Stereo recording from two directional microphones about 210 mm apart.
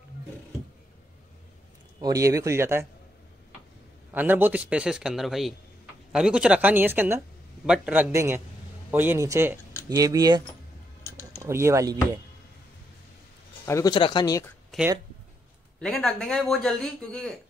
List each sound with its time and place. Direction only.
2.0 s speech: 15° right (ahead or behind)
4.1 s a man's voice: 10° right (ahead or behind)
13.7 s speech: 15° left (ahead or behind)
14.7 s a man's voice: centre (ahead or behind)